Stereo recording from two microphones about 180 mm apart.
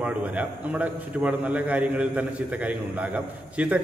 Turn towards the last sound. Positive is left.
turn(degrees=-5)  # may be behind; listen again after turning